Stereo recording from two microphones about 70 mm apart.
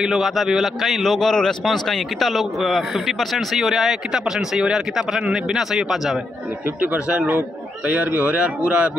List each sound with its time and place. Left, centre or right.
0.0 s a man's voice: centre
6.8 s speech: centre